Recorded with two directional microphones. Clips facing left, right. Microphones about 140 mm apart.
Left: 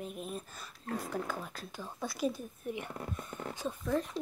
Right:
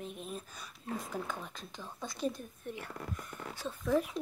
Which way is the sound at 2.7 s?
20° left (ahead or behind).